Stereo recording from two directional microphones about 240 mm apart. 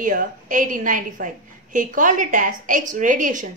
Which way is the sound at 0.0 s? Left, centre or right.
Right.